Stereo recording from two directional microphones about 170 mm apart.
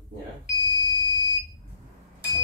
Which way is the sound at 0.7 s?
25° left (ahead or behind).